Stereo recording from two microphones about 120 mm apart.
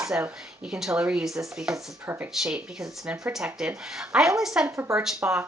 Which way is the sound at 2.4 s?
5° right (ahead or behind).